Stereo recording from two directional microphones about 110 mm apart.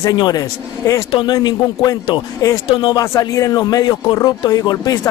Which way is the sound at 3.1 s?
30° left (ahead or behind).